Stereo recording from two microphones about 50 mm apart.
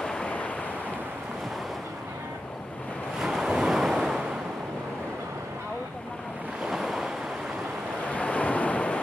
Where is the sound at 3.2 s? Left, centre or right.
Centre.